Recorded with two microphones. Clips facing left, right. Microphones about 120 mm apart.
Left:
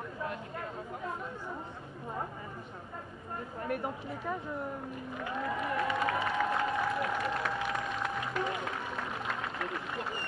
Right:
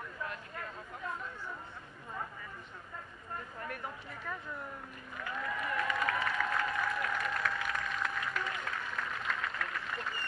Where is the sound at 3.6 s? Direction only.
20° left (ahead or behind).